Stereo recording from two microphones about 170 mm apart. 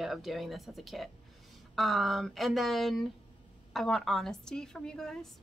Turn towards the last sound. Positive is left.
turn(degrees=5)  # may be behind; listen again after turning